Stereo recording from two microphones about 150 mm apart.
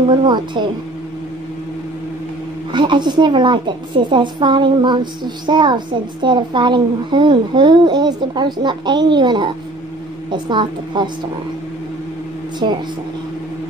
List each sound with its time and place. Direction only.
0.1 s a woman's voice: 30° right (ahead or behind)
2.7 s a woman's voice: 30° right (ahead or behind)
12.6 s a woman's voice: 30° right (ahead or behind)